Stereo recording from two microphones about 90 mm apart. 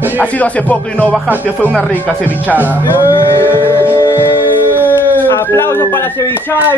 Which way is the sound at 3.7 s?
25° left (ahead or behind).